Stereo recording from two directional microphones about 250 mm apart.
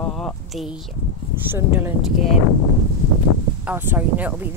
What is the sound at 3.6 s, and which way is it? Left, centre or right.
Speech, centre.